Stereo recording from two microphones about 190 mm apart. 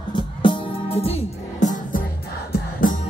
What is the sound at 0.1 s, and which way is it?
Music, 25° left (ahead or behind).